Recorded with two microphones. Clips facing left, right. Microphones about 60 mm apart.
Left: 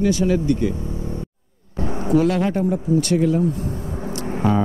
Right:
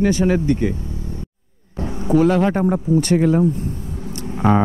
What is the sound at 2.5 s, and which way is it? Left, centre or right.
Speech, right.